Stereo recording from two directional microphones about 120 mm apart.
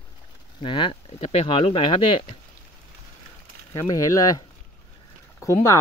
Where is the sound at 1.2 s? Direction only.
55° left (ahead or behind).